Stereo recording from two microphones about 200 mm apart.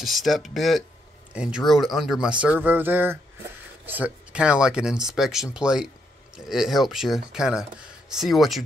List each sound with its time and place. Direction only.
0.0 s speech: centre (ahead or behind)
2.4 s a sound: 10° right (ahead or behind)
3.8 s speech: 10° right (ahead or behind)